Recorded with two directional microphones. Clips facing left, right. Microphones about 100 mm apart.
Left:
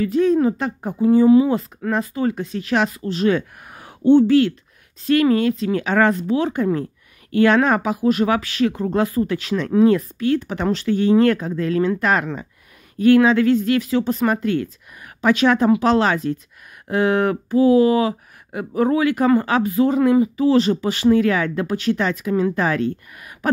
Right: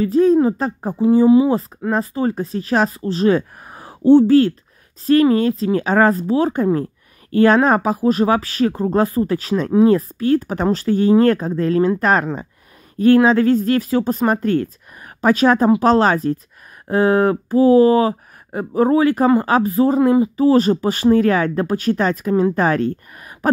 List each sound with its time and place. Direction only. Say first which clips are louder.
0.0 s speech: right 3 dB; 35° right (ahead or behind)
1.9 s speech: right 2 dB; 35° right (ahead or behind)